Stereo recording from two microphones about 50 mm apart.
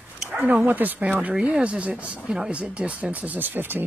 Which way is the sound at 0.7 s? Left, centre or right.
Right.